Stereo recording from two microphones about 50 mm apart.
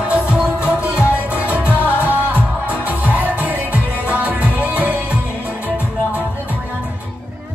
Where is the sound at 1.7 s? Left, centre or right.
Left.